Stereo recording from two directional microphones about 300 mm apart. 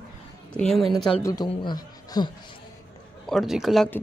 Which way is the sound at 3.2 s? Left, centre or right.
Centre.